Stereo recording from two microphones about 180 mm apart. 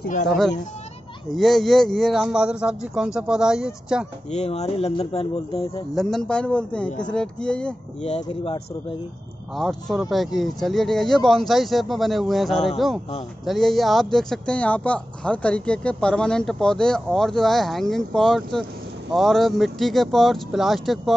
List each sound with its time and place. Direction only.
0.0 s speech: 45° left (ahead or behind)
1.3 s speech: centre (ahead or behind)
4.3 s speech: 35° left (ahead or behind)
5.9 s speech: centre (ahead or behind)
8.0 s speech: 35° left (ahead or behind)
9.6 s speech: centre (ahead or behind)